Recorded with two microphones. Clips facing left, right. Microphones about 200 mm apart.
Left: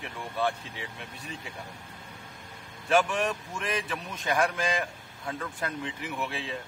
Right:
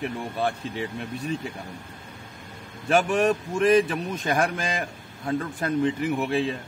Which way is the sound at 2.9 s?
40° right (ahead or behind).